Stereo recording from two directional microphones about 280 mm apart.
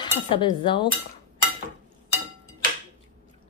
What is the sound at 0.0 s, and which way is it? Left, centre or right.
Speech, centre.